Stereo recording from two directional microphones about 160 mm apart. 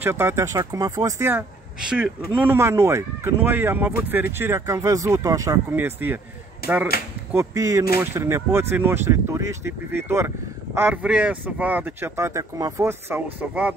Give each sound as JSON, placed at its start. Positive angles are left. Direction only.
{"t": 0.0, "sound": "speech", "side_deg": -15}
{"t": 6.6, "sound": "speech", "side_deg": 75}
{"t": 7.3, "sound": "speech", "side_deg": -20}